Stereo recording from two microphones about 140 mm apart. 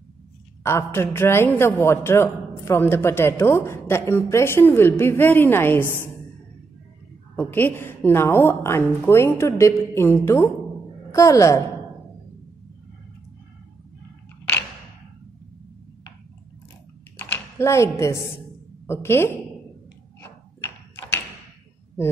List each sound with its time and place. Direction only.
0.7 s a woman's voice: 20° left (ahead or behind)
7.3 s a woman's voice: 15° left (ahead or behind)
17.2 s a woman's voice: 15° left (ahead or behind)
20.2 s a sound: 15° left (ahead or behind)